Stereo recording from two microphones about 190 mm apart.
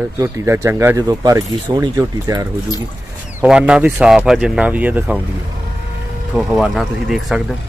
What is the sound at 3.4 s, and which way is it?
Speech, 5° right (ahead or behind).